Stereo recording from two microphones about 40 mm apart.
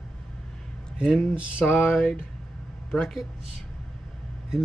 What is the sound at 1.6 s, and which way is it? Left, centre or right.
Speech, centre.